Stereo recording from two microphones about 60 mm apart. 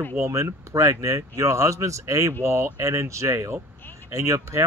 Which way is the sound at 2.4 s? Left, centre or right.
Right.